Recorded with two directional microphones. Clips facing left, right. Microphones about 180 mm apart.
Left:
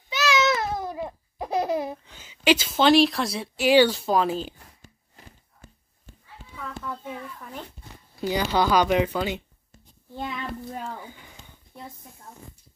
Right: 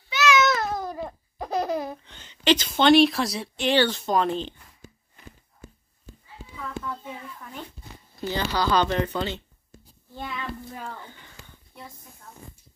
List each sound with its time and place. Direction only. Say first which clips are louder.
0.1 s babbling: right 2 dB; 35° left (ahead or behind)
0.5 s babbling: left 1 dB; 10° left (ahead or behind)
1.9 s speech: left 1 dB; 5° left (ahead or behind)
6.4 s children playing: right 5 dB; 40° right (ahead or behind)
8.2 s speech: left 3 dB; 15° left (ahead or behind)
11.0 s a sound: left 2 dB; 10° left (ahead or behind)